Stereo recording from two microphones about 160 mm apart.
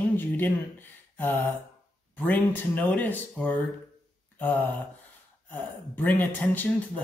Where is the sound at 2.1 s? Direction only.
10° left (ahead or behind).